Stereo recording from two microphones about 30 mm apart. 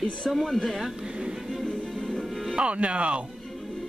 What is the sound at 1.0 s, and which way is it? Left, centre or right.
Vehicle, right.